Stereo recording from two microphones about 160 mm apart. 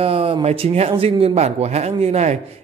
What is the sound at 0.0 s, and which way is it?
Speech, 40° right (ahead or behind).